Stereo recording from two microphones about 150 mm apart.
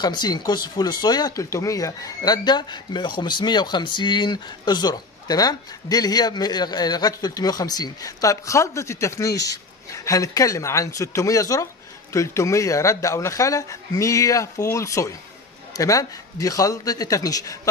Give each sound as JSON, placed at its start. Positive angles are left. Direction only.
{"t": 0.0, "sound": "speech", "side_deg": 30}